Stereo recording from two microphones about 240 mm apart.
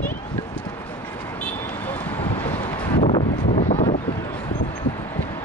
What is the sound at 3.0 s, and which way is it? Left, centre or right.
Wind noise, left.